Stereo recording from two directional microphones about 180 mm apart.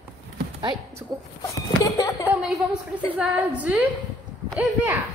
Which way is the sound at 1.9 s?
15° left (ahead or behind).